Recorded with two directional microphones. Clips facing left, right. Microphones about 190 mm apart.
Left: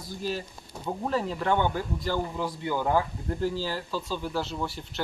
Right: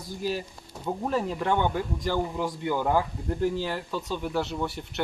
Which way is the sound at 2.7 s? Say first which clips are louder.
Even; centre (ahead or behind).